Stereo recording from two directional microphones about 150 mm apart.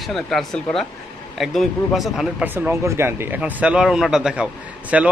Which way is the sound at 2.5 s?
15° right (ahead or behind).